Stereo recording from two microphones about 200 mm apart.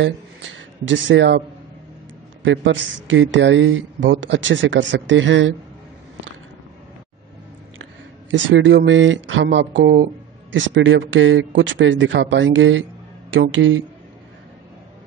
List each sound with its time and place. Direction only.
0.0 s speech: 65° right (ahead or behind)
2.4 s speech: 65° right (ahead or behind)
8.3 s speech: 65° right (ahead or behind)